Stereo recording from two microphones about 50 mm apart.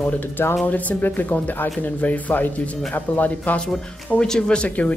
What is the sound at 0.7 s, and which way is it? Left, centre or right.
Speech, left.